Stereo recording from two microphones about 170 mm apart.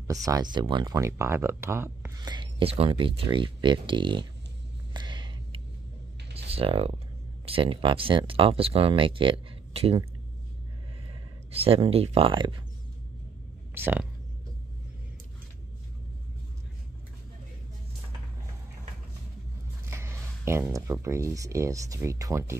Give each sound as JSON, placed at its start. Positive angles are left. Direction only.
{"t": 0.1, "sound": "speech", "side_deg": -20}
{"t": 4.9, "sound": "a sound", "side_deg": -25}
{"t": 6.3, "sound": "speech", "side_deg": -35}
{"t": 11.5, "sound": "speech", "side_deg": -35}
{"t": 13.7, "sound": "speech", "side_deg": -10}
{"t": 19.9, "sound": "speech", "side_deg": -15}